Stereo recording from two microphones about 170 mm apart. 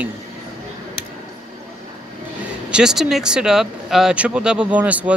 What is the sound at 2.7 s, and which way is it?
Speech, 5° right (ahead or behind).